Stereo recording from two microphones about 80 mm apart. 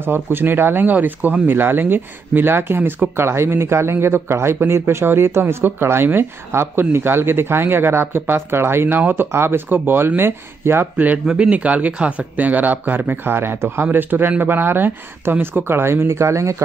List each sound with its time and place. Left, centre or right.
0.0 s speech: right
11.2 s speech: centre; by 16.6 s right